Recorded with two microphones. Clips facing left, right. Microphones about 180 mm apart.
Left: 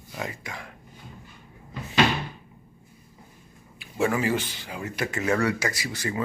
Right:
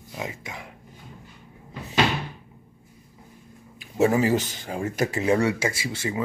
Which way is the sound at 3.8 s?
35° right (ahead or behind).